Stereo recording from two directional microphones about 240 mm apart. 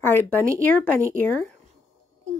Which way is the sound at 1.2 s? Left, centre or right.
Centre.